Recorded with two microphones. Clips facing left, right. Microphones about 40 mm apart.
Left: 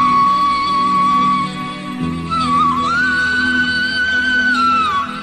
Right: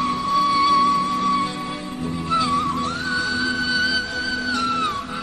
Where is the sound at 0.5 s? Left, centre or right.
Centre.